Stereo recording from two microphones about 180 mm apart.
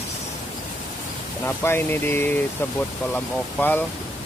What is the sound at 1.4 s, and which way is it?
Speech, 15° left (ahead or behind).